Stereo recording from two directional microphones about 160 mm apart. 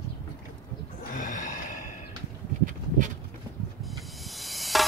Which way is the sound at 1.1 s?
55° left (ahead or behind).